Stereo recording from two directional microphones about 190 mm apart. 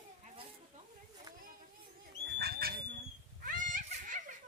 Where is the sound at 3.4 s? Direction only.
45° right (ahead or behind).